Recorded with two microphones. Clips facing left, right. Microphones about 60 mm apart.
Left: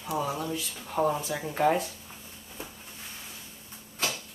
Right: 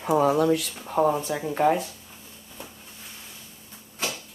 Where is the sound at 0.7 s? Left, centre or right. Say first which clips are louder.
Right 5 dB; right.